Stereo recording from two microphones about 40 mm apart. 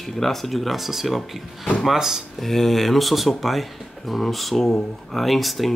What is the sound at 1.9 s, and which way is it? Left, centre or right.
Speech, centre.